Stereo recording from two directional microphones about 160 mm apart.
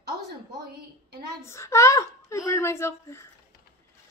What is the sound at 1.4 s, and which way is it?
Speech, 15° left (ahead or behind).